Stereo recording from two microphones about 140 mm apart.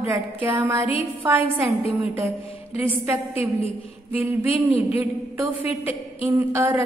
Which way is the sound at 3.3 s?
45° left (ahead or behind).